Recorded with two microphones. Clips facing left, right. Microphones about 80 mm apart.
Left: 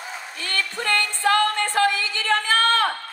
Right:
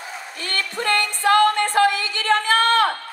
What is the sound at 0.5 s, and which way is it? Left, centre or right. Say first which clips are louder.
Music: right 2 dB; right.